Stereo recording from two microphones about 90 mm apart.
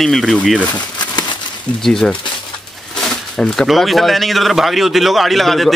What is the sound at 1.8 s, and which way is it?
Speech, 5° left (ahead or behind).